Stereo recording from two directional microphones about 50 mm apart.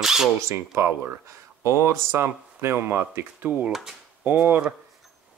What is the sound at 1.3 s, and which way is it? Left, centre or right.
Speech, right.